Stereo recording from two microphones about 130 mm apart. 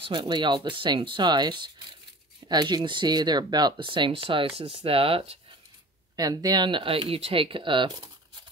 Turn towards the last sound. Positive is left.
turn(degrees=-40)  # may be behind; listen again after turning